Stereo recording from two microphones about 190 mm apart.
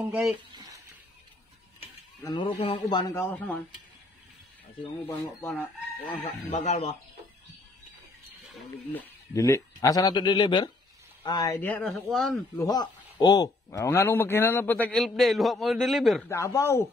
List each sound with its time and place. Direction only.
0.1 s speech: 10° right (ahead or behind)
2.2 s speech: 25° left (ahead or behind)
5.0 s a man's voice: 10° left (ahead or behind)
6.0 s speech: 30° left (ahead or behind)
8.9 s a man's voice: 15° left (ahead or behind)
12.5 s a man's voice: 20° left (ahead or behind); by 16.3 s centre (ahead or behind)
16.3 s a man's voice: 15° left (ahead or behind)